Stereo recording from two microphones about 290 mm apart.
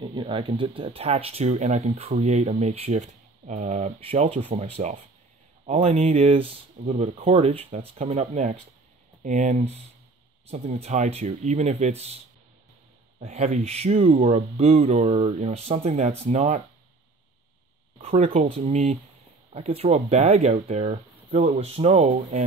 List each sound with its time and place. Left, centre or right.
0.0 s speech: centre
13.2 s speech: right
17.9 s speech: right